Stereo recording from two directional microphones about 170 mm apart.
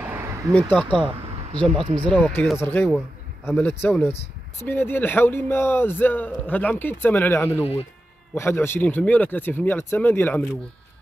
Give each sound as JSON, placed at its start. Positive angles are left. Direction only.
{"t": 0.0, "sound": "a sound", "side_deg": -10}
{"t": 0.8, "sound": "speech", "side_deg": 5}
{"t": 1.7, "sound": "speech", "side_deg": -30}
{"t": 2.0, "sound": "speech", "side_deg": 5}